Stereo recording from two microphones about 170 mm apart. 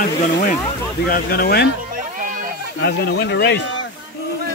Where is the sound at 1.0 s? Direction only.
60° left (ahead or behind).